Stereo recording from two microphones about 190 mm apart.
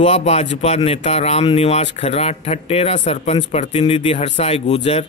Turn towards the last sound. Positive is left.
turn(degrees=30)  # may be behind; listen again after turning